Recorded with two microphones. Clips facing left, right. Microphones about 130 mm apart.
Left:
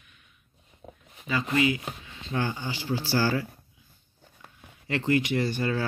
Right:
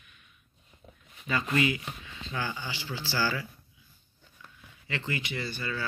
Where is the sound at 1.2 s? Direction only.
15° left (ahead or behind).